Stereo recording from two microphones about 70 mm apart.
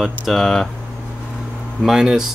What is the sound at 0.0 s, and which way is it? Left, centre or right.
Speech, centre.